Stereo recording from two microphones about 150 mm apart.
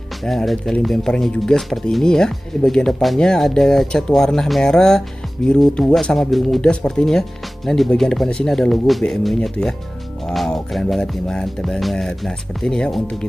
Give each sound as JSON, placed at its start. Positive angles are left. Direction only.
{"t": 0.2, "sound": "speech", "side_deg": 0}